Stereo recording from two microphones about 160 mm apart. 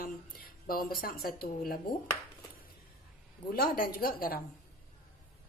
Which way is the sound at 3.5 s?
70° left (ahead or behind).